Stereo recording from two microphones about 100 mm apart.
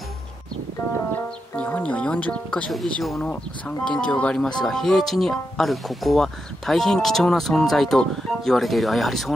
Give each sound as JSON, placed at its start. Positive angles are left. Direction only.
{"t": 1.6, "sound": "speech", "side_deg": 15}